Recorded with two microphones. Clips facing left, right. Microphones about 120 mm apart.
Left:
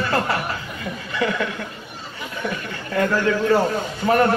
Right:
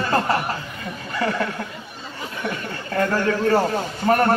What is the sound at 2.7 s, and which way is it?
A man's voice, 40° right (ahead or behind).